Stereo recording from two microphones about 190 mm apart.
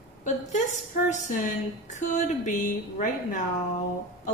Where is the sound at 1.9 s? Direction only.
40° left (ahead or behind).